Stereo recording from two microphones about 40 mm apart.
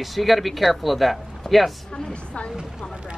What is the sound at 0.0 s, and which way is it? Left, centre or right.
Speech, centre.